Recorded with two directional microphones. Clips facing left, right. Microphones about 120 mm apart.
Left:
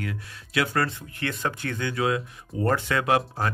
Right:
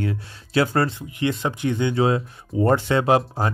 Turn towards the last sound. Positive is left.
turn(degrees=-30)  # may be behind; listen again after turning